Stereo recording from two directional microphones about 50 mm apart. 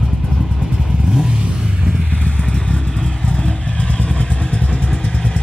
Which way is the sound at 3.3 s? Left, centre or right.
Centre.